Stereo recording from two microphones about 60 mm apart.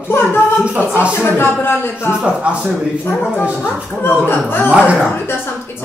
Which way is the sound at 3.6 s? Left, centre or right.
Left.